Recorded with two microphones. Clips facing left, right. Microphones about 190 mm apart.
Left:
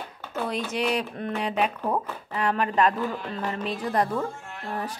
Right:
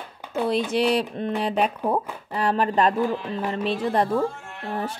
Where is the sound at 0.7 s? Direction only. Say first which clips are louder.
Right 5 dB; 30° right (ahead or behind).